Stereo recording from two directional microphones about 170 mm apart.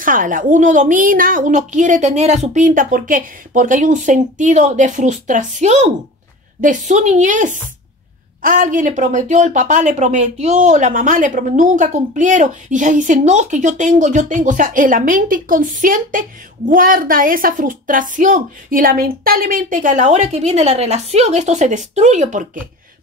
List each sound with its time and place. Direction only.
0.0 s speech: 55° right (ahead or behind)